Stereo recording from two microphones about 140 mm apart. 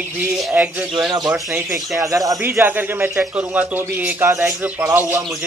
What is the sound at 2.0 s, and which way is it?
A man's voice, 25° right (ahead or behind).